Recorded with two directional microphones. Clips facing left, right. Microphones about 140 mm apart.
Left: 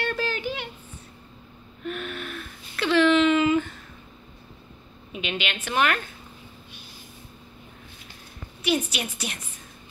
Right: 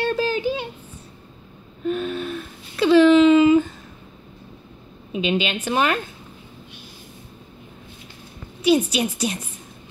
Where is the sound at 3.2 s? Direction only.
20° right (ahead or behind).